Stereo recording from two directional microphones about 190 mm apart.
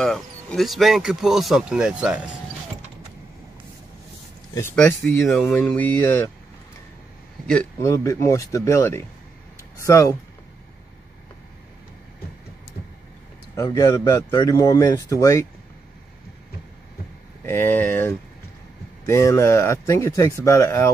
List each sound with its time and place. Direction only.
0.0 s speech: centre (ahead or behind)
4.6 s speech: 10° left (ahead or behind)
7.8 s speech: 15° left (ahead or behind)
13.6 s speech: 20° left (ahead or behind)
17.5 s speech: 10° left (ahead or behind)